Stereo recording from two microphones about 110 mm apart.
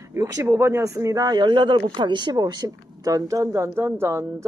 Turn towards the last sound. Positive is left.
turn(degrees=-25)  # may be behind; listen again after turning